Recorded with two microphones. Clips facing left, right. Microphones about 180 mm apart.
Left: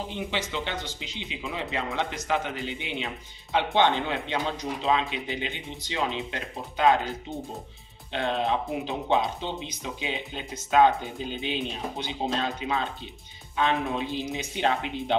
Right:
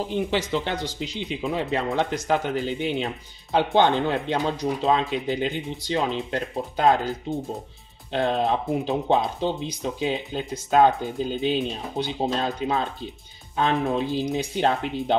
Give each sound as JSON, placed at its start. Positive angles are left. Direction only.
{"t": 0.1, "sound": "speech", "side_deg": -40}
{"t": 8.1, "sound": "speech", "side_deg": -40}
{"t": 13.6, "sound": "speech", "side_deg": -40}